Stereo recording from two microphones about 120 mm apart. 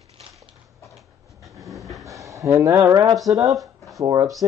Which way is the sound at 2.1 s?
25° right (ahead or behind).